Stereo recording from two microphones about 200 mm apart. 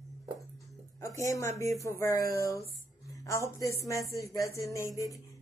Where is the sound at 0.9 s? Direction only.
15° left (ahead or behind).